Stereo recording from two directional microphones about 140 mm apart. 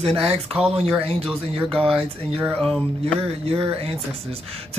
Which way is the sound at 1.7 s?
5° left (ahead or behind).